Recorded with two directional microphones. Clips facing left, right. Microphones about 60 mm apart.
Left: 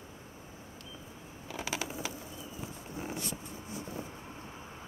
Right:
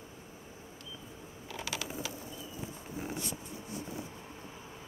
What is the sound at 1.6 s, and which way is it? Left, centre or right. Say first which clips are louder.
Mechanisms: left 2 dB; left.